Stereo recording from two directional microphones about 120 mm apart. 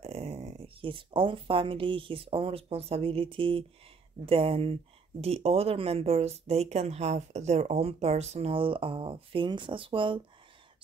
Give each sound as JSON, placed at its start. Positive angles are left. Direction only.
{"t": 0.0, "sound": "speech", "side_deg": -60}